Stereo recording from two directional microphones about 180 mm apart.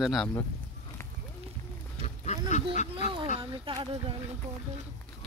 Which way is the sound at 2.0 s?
40° left (ahead or behind).